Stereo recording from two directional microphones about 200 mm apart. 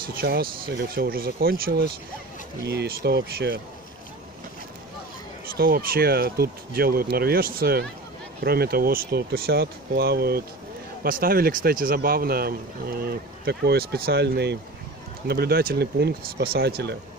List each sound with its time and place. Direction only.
0.0 s speech: 50° right (ahead or behind)
5.5 s speech: 45° right (ahead or behind)